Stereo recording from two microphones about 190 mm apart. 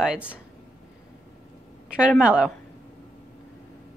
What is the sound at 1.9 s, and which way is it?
Speech, 5° right (ahead or behind).